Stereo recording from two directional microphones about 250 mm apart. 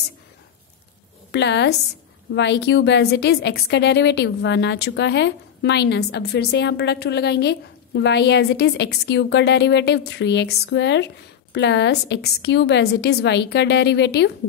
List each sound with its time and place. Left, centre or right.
1.3 s a woman's voice: left